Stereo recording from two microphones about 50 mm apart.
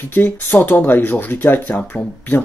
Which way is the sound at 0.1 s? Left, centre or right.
Left.